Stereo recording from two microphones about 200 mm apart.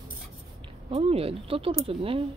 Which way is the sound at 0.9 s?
30° right (ahead or behind).